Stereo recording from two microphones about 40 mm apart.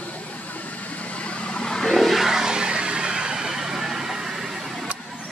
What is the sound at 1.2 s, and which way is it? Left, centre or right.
Vehicle, left.